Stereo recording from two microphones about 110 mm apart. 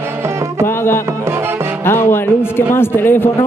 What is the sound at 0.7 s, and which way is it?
Music, 20° left (ahead or behind).